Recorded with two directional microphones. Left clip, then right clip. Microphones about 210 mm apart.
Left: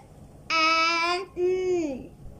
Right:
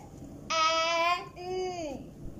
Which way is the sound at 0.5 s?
50° left (ahead or behind).